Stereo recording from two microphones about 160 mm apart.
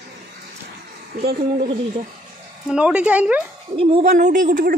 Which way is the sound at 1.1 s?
70° right (ahead or behind).